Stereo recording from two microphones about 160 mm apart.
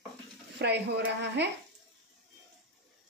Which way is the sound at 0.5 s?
90° right.